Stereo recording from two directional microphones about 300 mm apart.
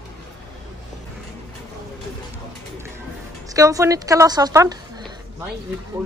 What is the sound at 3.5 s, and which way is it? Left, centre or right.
Speech, centre.